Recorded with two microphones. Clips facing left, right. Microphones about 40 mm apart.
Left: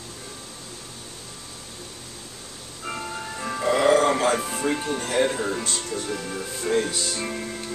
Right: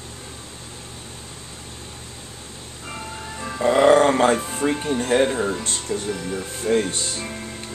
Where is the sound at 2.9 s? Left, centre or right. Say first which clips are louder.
Left 2 dB; centre.